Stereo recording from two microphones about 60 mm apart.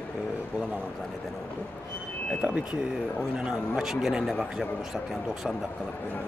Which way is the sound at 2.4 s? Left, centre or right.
Right.